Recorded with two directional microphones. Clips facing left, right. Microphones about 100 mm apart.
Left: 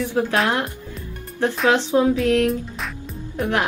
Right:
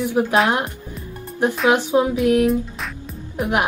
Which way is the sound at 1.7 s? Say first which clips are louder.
Even; 15° right (ahead or behind).